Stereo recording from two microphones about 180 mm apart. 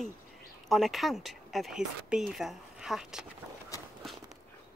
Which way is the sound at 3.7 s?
15° left (ahead or behind).